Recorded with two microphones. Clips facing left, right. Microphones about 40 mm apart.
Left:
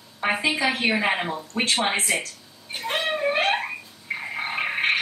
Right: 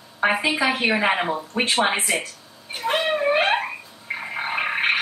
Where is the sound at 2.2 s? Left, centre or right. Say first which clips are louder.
Right 2 dB; centre.